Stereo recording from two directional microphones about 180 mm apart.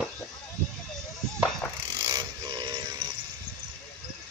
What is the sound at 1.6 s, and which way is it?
Mechanisms, 5° left (ahead or behind).